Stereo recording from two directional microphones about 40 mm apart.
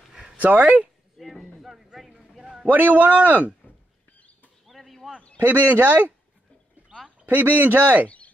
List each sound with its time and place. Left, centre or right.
0.4 s speech: right
1.1 s speech: centre
1.6 s a sound: centre
2.6 s a man's voice: right
4.6 s a sound: centre
5.7 s a man's voice: right
7.2 s a man's voice: right